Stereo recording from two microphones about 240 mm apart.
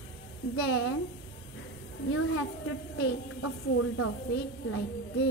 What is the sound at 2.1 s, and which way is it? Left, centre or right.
A woman's voice, left.